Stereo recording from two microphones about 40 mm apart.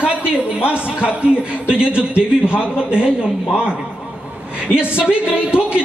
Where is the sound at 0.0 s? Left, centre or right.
Right.